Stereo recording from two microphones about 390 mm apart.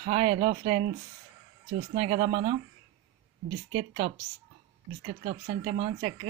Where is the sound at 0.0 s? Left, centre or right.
Centre.